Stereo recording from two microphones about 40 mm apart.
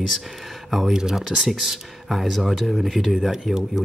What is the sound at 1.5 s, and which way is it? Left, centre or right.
Speech, centre.